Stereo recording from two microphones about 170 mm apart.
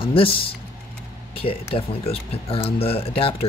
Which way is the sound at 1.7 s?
35° left (ahead or behind).